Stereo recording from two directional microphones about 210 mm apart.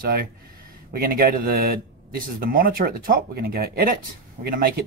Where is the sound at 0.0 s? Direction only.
45° right (ahead or behind).